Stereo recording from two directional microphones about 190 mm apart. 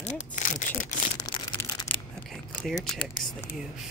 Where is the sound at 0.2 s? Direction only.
45° left (ahead or behind).